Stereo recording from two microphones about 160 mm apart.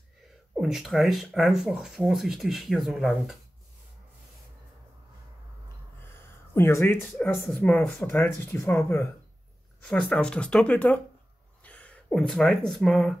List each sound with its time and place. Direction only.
0.6 s speech: 5° right (ahead or behind)
6.5 s speech: 15° left (ahead or behind)
7.4 s speech: 5° left (ahead or behind)